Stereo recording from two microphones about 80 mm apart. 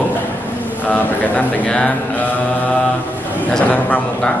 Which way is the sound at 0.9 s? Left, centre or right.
Centre.